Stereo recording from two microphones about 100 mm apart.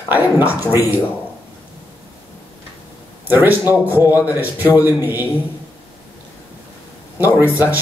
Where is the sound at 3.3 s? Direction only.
20° right (ahead or behind).